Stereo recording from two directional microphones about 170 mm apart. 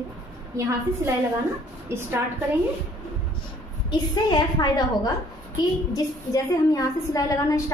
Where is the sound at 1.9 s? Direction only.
15° right (ahead or behind).